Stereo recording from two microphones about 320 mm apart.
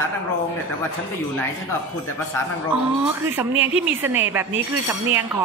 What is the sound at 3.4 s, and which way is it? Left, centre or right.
Speech, centre.